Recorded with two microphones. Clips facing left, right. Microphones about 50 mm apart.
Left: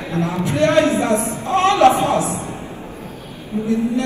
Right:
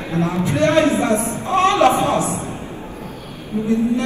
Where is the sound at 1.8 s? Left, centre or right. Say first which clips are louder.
Left 5 dB; left.